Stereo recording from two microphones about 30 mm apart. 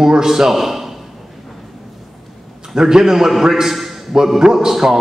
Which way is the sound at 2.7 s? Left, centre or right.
Centre.